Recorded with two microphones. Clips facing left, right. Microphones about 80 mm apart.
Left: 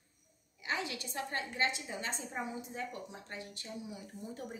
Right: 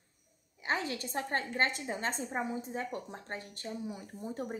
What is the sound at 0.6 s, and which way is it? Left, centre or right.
A woman's voice, right.